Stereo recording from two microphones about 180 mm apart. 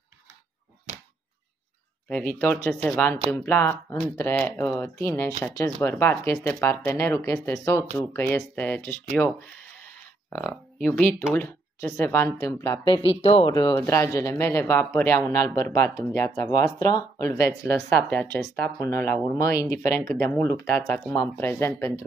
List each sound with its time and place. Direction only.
0.9 s a sound: 40° right (ahead or behind)
2.0 s speech: 5° left (ahead or behind)
9.8 s a sound: 10° left (ahead or behind)
11.3 s speech: 10° left (ahead or behind)
12.8 s speech: 30° left (ahead or behind)
13.6 s speech: 15° left (ahead or behind)